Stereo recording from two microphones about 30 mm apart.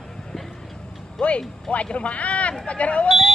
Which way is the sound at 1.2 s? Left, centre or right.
Left.